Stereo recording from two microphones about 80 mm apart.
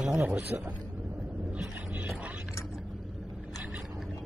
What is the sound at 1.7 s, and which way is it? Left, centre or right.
Music, centre.